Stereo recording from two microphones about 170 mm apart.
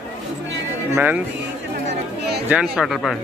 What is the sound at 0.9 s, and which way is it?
Speech, 10° right (ahead or behind).